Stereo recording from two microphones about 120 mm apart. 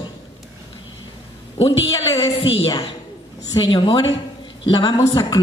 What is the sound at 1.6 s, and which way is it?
A woman's voice, 50° left (ahead or behind).